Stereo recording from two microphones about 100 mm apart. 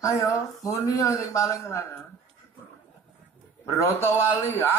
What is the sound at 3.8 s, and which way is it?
Speech, 25° left (ahead or behind).